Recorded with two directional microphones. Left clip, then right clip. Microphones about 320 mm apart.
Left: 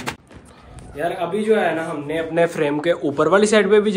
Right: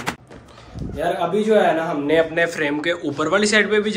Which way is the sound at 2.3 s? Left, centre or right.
Centre.